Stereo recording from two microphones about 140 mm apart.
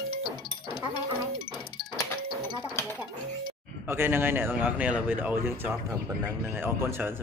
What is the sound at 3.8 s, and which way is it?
Speech, 15° right (ahead or behind).